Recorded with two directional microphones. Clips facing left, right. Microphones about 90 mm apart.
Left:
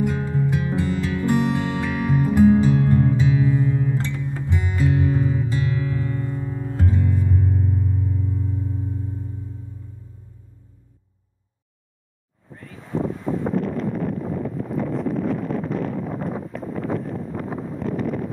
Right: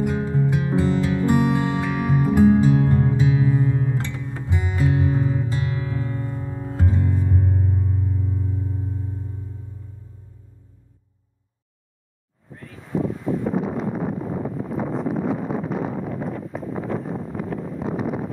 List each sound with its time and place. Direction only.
0.1 s music: 30° right (ahead or behind)
2.4 s music: 10° right (ahead or behind)
2.9 s music: 25° right (ahead or behind)
3.9 s music: 10° right (ahead or behind)
12.5 s wind: centre (ahead or behind)
13.5 s a sound: 5° right (ahead or behind)